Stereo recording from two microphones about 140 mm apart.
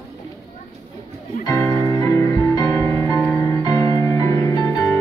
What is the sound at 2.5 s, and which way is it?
Music, 25° left (ahead or behind).